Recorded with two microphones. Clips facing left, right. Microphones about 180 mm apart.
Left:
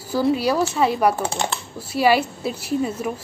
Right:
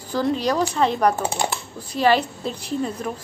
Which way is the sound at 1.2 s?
10° right (ahead or behind).